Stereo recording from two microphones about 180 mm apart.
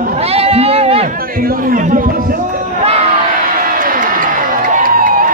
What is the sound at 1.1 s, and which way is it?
Music, 55° right (ahead or behind).